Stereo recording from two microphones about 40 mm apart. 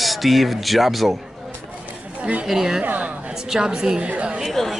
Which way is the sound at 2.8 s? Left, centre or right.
Right.